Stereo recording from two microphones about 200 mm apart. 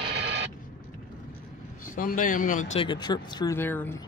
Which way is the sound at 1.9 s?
45° left (ahead or behind).